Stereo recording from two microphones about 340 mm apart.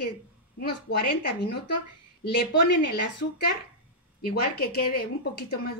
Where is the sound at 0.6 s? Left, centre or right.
Left.